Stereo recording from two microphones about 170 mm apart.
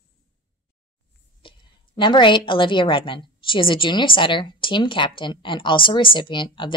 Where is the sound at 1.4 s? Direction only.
30° left (ahead or behind).